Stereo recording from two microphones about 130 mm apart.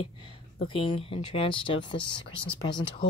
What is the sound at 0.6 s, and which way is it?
Speech, 40° left (ahead or behind).